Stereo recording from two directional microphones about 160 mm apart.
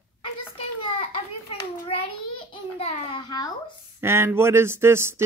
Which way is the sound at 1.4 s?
35° left (ahead or behind).